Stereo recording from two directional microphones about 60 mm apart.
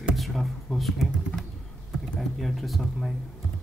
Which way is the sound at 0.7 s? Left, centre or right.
Centre.